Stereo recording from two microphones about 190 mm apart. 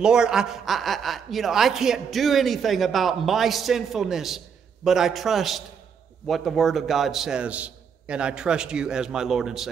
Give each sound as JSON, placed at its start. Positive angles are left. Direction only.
{"t": 0.0, "sound": "a woman's voice", "side_deg": -5}